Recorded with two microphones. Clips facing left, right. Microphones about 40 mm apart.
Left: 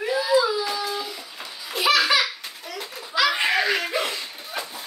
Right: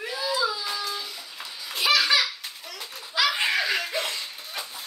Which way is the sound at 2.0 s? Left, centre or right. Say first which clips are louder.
Left 2 dB; centre.